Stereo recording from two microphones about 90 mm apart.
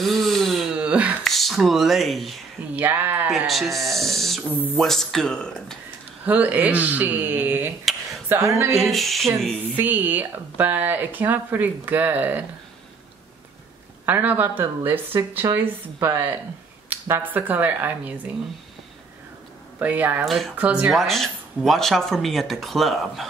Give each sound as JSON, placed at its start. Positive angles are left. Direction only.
{"t": 0.0, "sound": "a sound", "side_deg": 0}
{"t": 0.7, "sound": "a sound", "side_deg": -15}
{"t": 1.2, "sound": "speech", "side_deg": 0}
{"t": 2.7, "sound": "speech", "side_deg": -20}
{"t": 3.3, "sound": "speech", "side_deg": 0}
{"t": 6.2, "sound": "speech", "side_deg": -15}
{"t": 8.7, "sound": "speech", "side_deg": 0}
{"t": 9.8, "sound": "speech", "side_deg": -20}
{"t": 14.0, "sound": "speech", "side_deg": -20}
{"t": 19.8, "sound": "speech", "side_deg": -20}
{"t": 20.2, "sound": "speech", "side_deg": 0}
{"t": 20.5, "sound": "speech", "side_deg": -15}
{"t": 20.9, "sound": "speech", "side_deg": 0}